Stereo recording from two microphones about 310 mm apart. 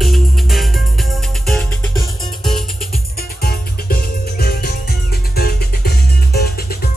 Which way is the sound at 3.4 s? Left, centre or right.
Left.